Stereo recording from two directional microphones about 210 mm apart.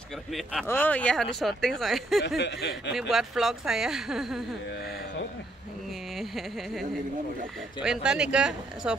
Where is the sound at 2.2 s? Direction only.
55° left (ahead or behind).